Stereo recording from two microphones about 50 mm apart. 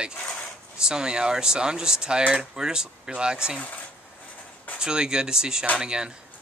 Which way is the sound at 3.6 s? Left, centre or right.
Left.